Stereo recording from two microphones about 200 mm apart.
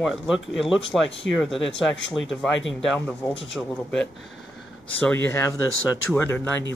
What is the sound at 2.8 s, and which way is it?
Speech, 5° left (ahead or behind).